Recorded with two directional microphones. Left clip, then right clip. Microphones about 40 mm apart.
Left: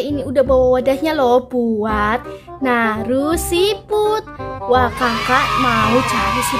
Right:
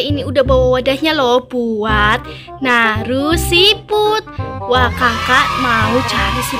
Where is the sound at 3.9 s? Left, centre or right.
Left.